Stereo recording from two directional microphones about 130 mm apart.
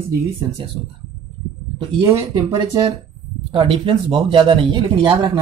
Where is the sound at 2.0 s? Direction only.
20° right (ahead or behind).